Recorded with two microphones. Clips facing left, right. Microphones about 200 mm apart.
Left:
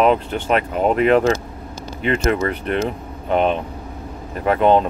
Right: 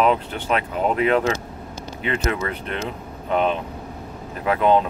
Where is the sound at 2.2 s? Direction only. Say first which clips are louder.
Left 5 dB; 55° left (ahead or behind).